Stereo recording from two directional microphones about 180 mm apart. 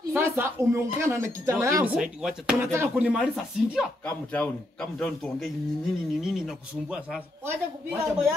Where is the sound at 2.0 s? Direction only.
5° right (ahead or behind).